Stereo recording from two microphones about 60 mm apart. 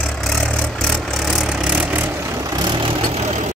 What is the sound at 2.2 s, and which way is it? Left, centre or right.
Vehicle, right.